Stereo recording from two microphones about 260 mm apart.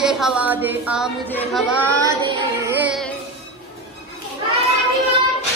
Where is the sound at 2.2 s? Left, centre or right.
Centre.